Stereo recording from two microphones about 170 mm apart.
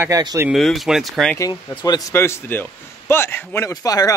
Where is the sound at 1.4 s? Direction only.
20° left (ahead or behind).